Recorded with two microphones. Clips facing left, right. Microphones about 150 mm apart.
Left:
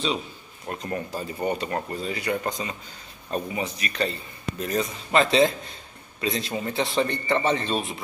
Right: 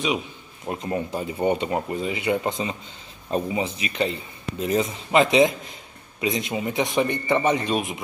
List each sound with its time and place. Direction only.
0.7 s a man's voice: 20° right (ahead or behind)